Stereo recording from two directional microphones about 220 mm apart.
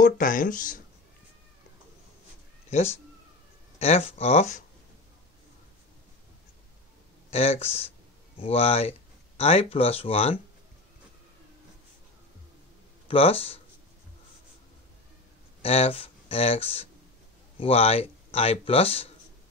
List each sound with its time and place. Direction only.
0.0 s speech: 35° left (ahead or behind)
2.7 s speech: 30° left (ahead or behind)
7.2 s speech: 30° left (ahead or behind)
13.1 s speech: 25° left (ahead or behind)
15.6 s speech: 25° left (ahead or behind)